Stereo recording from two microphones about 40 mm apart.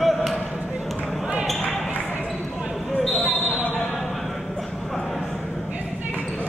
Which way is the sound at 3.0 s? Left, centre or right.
Centre.